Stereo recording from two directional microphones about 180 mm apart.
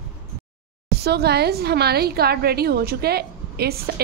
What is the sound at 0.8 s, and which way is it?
A woman's voice, 65° right (ahead or behind).